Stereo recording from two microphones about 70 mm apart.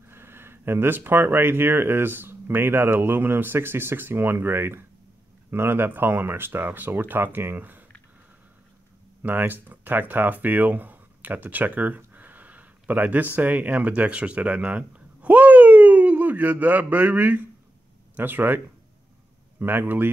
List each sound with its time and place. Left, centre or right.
0.1 s speech: right
9.2 s speech: right
19.6 s speech: right